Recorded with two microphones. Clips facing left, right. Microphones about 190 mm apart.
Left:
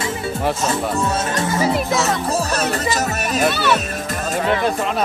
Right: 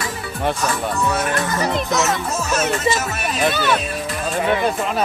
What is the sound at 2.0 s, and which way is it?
A child's voice, 35° left (ahead or behind).